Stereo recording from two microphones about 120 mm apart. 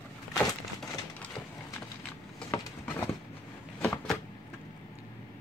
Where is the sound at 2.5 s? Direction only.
20° left (ahead or behind).